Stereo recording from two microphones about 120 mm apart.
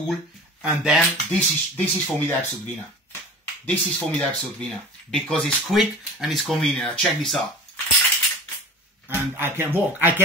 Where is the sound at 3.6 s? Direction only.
10° left (ahead or behind).